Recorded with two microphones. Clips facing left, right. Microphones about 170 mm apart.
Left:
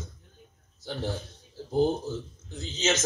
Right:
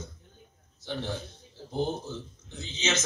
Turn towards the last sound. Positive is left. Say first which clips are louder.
# left 4 dB
turn(degrees=40)  # may be behind; listen again after turning